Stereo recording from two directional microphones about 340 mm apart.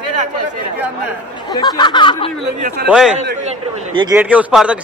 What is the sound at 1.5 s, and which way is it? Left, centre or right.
Speech, centre.